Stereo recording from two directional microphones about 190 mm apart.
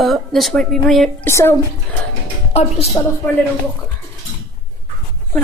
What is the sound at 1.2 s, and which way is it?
Speech, 15° left (ahead or behind).